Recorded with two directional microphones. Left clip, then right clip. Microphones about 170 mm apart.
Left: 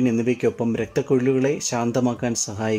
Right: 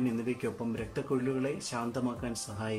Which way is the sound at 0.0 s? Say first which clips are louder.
Left 13 dB; 35° left (ahead or behind).